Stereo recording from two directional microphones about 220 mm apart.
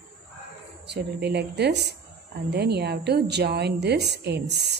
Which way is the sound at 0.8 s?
50° right (ahead or behind).